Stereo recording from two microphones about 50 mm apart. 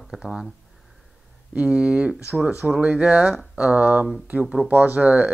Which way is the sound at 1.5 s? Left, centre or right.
Right.